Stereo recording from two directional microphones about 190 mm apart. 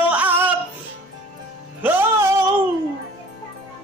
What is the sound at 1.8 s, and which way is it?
Music, 10° right (ahead or behind).